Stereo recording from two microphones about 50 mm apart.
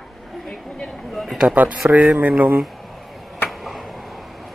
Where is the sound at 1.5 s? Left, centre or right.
Right.